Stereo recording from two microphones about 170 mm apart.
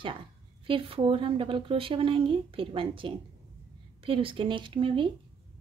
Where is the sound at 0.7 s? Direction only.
30° right (ahead or behind).